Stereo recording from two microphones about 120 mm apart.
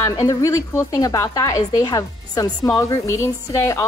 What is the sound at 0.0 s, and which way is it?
A woman's voice, 30° left (ahead or behind).